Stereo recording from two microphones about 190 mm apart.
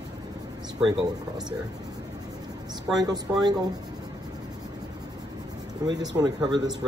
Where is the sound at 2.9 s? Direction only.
20° right (ahead or behind).